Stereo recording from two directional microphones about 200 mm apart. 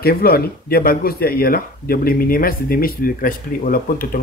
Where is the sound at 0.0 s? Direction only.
50° left (ahead or behind).